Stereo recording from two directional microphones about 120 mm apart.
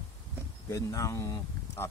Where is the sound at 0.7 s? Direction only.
25° left (ahead or behind).